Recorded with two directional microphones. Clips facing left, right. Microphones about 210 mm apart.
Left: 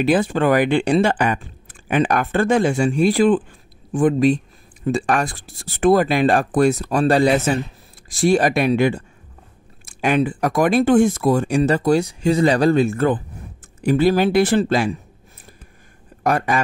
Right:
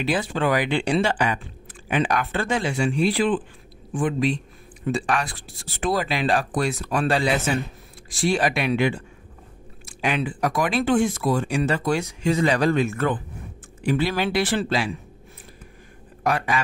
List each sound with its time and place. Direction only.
0.0 s speech: 50° left (ahead or behind)
16.3 s speech: 45° left (ahead or behind)